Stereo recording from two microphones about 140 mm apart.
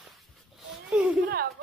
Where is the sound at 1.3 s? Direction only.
90° right.